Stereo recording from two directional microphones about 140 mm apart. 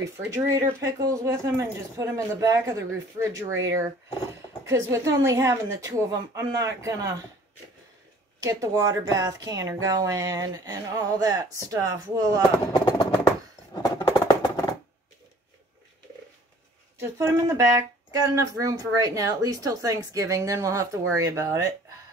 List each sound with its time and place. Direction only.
0.0 s speech: 20° right (ahead or behind)
8.4 s speech: 25° right (ahead or behind)
12.7 s a sound: 30° left (ahead or behind)
14.2 s music: 25° left (ahead or behind)
17.0 s speech: 20° right (ahead or behind)